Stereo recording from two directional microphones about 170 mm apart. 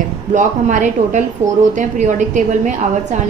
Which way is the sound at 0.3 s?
45° right (ahead or behind).